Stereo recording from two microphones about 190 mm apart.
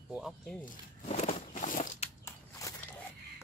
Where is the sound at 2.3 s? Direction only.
15° left (ahead or behind).